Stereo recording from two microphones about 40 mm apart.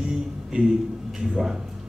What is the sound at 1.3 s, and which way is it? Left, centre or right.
Speech, centre.